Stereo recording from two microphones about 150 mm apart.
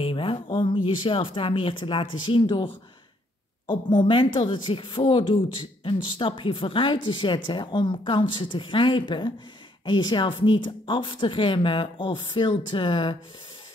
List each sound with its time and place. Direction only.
0.0 s a woman's voice: 35° left (ahead or behind)